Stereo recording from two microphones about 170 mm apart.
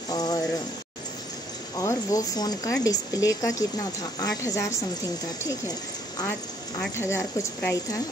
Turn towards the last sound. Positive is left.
turn(degrees=15)  # may be behind; listen again after turning